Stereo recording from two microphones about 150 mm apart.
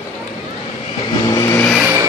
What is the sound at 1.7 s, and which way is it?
Vehicle, 15° right (ahead or behind).